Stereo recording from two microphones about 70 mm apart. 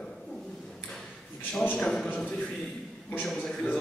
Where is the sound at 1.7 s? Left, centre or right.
Centre.